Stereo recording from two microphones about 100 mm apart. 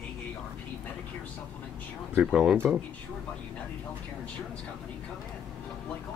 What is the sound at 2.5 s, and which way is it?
Speech, 20° right (ahead or behind).